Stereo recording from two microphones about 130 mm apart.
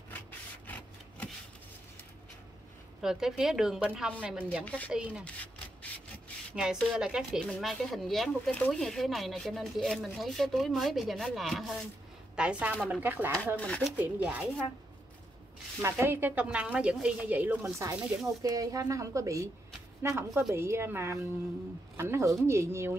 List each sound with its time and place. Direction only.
3.0 s a woman's voice: 5° right (ahead or behind)
4.6 s speech: 10° left (ahead or behind)
5.2 s a sound: 10° left (ahead or behind)
6.5 s a woman's voice: 5° right (ahead or behind)
13.6 s speech: 10° left (ahead or behind)
13.9 s a woman's voice: 10° right (ahead or behind)
15.8 s a woman's voice: 20° right (ahead or behind)
17.7 s speech: 25° right (ahead or behind)